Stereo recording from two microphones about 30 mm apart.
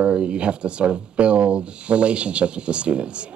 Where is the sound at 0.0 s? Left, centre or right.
Right.